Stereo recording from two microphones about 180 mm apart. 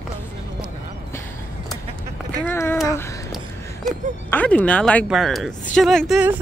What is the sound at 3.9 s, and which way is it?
Speech, 5° left (ahead or behind).